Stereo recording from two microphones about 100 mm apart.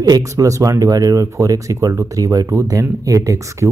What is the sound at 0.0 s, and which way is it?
Speech, 35° right (ahead or behind).